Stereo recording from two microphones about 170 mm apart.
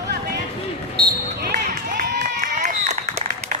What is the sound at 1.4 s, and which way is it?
Run, 65° right (ahead or behind).